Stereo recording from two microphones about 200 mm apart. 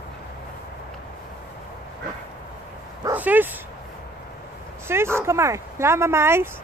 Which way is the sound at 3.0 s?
10° right (ahead or behind).